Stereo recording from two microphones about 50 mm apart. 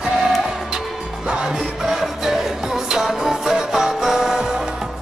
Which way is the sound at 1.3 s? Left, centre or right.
Centre.